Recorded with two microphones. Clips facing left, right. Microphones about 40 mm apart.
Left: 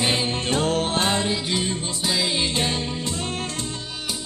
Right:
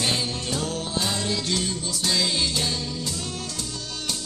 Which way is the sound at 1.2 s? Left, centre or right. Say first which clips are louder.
Left 2 dB; left.